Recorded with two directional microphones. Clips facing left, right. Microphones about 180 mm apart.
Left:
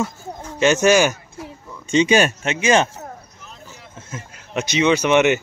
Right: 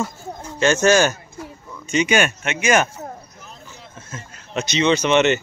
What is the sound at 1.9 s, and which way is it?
Speech, 30° left (ahead or behind).